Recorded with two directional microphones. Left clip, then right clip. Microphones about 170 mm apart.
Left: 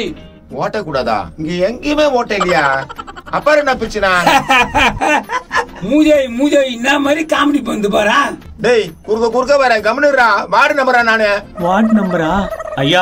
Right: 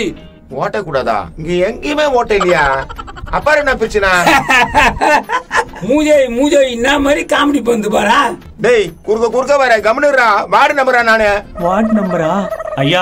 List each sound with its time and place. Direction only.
0.6 s fowl: 20° right (ahead or behind)
1.5 s speech: 35° right (ahead or behind)
5.5 s a man's voice: 50° right (ahead or behind)
8.5 s speech: 35° right (ahead or behind)
11.6 s fowl: centre (ahead or behind)